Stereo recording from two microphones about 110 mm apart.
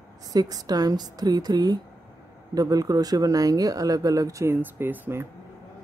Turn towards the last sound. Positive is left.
turn(degrees=-20)  # may be behind; listen again after turning